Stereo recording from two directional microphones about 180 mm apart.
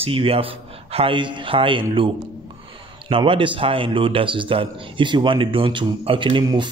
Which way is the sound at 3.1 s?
30° right (ahead or behind).